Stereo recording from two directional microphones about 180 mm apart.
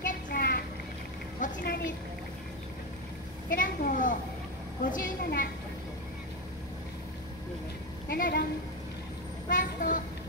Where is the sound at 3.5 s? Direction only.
50° left (ahead or behind).